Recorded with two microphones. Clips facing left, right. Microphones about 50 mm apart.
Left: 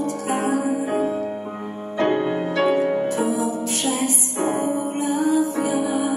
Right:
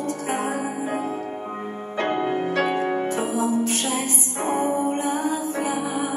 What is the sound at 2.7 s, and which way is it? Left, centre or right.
Music, right.